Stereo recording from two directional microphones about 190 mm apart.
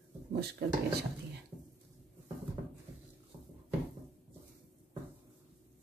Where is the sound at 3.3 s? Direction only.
20° right (ahead or behind).